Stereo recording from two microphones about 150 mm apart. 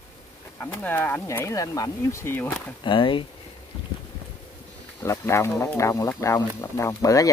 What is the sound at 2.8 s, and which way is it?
Speech, 35° left (ahead or behind).